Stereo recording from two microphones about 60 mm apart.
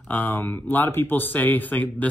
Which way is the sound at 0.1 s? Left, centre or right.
Left.